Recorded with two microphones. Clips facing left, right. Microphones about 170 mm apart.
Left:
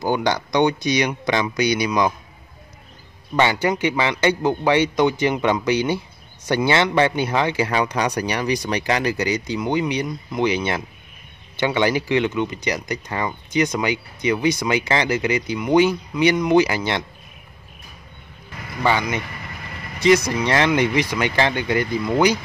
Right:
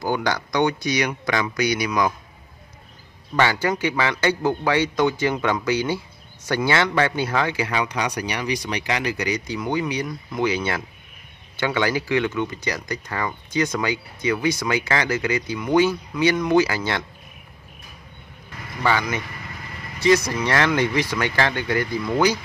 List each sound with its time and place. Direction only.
0.0 s a man's voice: 20° left (ahead or behind)
3.6 s a man's voice: 20° left (ahead or behind); by 9.1 s 40° left (ahead or behind)
9.1 s a man's voice: 25° left (ahead or behind)
18.8 s a man's voice: 20° left (ahead or behind)